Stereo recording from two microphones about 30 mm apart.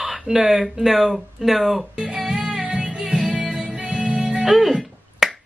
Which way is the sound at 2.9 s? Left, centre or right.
Right.